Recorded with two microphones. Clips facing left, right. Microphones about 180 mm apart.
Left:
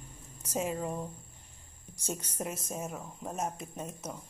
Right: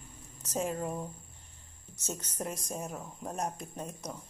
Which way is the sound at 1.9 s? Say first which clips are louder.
Left 1 dB; 10° left (ahead or behind).